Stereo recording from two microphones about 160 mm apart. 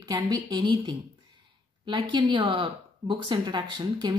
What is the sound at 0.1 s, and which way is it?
A woman's voice, 25° right (ahead or behind).